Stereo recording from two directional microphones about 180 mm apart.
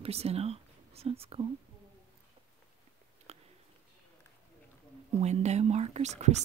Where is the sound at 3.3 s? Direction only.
35° right (ahead or behind).